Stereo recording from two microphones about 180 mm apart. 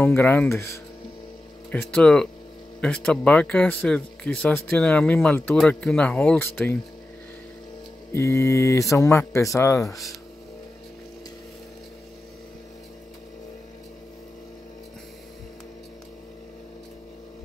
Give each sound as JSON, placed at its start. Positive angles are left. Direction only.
{"t": 0.0, "sound": "speech", "side_deg": 15}
{"t": 1.7, "sound": "speech", "side_deg": 5}
{"t": 8.1, "sound": "speech", "side_deg": 15}